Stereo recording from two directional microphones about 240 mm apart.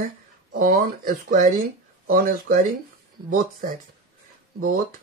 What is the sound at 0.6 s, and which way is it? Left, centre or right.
Speech, right.